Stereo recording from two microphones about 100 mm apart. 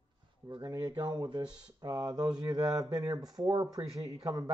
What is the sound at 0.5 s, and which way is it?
Speech, 40° right (ahead or behind).